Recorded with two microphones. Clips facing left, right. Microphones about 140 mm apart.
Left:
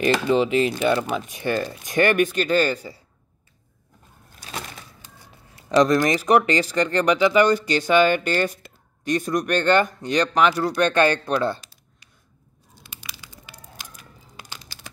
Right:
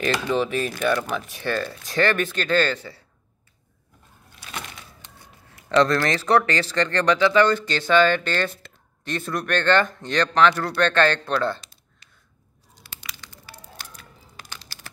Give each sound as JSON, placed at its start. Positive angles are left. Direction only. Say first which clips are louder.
{"t": 0.3, "sound": "speech", "louder": "left 4 dB", "side_deg": 20}
{"t": 5.8, "sound": "speech", "louder": "left 2 dB", "side_deg": 15}
{"t": 12.8, "sound": "a sound", "louder": "right 1 dB", "side_deg": 15}